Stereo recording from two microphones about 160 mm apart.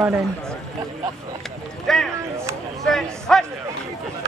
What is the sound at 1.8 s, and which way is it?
Speech, centre (ahead or behind).